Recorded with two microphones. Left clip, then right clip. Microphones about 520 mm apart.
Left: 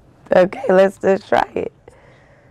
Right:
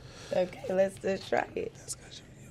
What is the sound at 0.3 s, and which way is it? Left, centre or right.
Speech, left.